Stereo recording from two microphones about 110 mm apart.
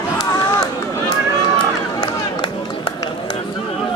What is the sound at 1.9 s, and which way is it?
Run, 40° left (ahead or behind).